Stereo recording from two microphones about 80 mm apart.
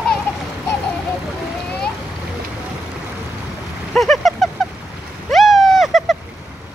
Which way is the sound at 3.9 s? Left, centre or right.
Centre.